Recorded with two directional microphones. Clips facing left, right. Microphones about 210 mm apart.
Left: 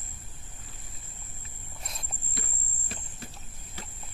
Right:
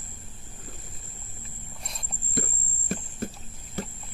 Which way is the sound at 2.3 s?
50° right (ahead or behind).